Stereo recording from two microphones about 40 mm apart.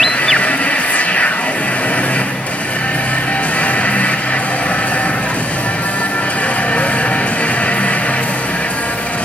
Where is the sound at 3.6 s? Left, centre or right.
Left.